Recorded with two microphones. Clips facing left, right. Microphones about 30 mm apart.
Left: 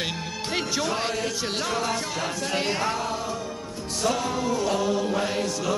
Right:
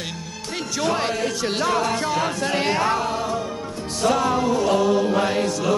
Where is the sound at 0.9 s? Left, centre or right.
Centre.